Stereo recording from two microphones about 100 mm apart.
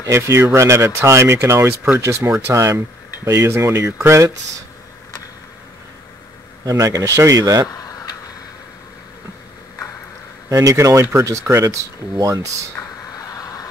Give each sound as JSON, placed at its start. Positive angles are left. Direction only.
{"t": 0.0, "sound": "speech", "side_deg": -30}
{"t": 6.6, "sound": "speech", "side_deg": -35}
{"t": 7.7, "sound": "a sound", "side_deg": 35}
{"t": 10.5, "sound": "speech", "side_deg": -35}
{"t": 12.8, "sound": "a sound", "side_deg": 20}
{"t": 13.1, "sound": "vehicle", "side_deg": 35}